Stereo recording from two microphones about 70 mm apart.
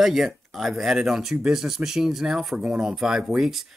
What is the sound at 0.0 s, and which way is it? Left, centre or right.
Speech, centre.